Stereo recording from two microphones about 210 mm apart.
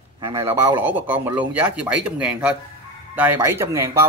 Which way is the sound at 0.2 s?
15° right (ahead or behind).